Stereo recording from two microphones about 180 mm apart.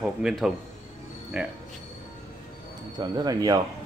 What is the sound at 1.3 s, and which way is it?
Speech, 5° right (ahead or behind).